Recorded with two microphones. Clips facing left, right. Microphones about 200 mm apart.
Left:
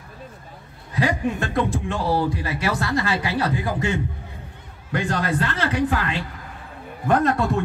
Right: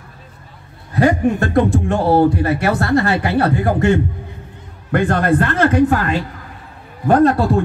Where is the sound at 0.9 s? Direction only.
55° right (ahead or behind).